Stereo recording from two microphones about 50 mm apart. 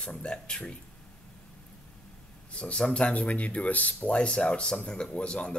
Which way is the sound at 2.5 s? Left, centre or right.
Centre.